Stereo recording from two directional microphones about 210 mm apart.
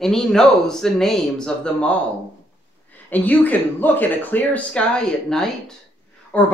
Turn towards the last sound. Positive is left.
turn(degrees=5)  # may be behind; listen again after turning